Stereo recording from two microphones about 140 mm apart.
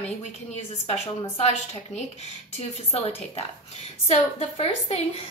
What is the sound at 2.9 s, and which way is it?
A woman's voice, 45° left (ahead or behind).